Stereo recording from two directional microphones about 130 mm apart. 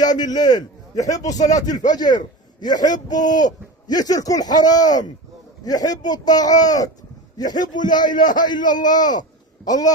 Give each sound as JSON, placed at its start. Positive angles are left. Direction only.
{"t": 0.0, "sound": "a man's voice", "side_deg": 30}